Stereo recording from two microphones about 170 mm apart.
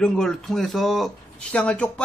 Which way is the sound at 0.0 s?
5° left (ahead or behind).